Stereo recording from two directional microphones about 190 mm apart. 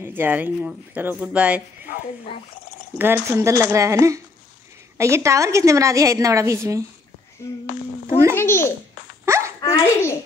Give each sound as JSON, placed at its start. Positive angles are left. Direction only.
{"t": 0.0, "sound": "a woman's voice", "side_deg": -10}
{"t": 3.0, "sound": "a woman's voice", "side_deg": -10}
{"t": 7.4, "sound": "a child's voice", "side_deg": 15}
{"t": 9.2, "sound": "a sound", "side_deg": -15}
{"t": 9.6, "sound": "a child's voice", "side_deg": 15}